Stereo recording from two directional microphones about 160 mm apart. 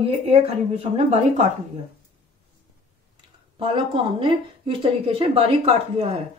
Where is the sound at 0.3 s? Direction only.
40° right (ahead or behind).